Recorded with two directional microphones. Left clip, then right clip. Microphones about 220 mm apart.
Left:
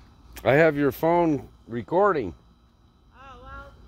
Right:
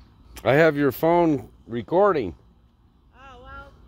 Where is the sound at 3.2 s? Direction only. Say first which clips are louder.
Even; 45° right (ahead or behind).